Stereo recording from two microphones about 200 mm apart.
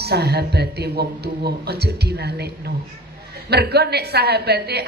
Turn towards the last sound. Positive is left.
turn(degrees=-55)  # may be behind; listen again after turning